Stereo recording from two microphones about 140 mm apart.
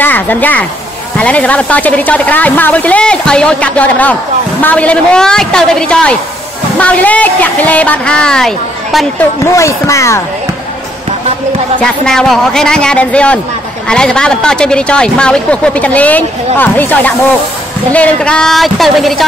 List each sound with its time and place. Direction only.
0.0 s a woman's voice: 10° left (ahead or behind)
9.5 s speech: 20° left (ahead or behind)
11.8 s a man's voice: 5° left (ahead or behind)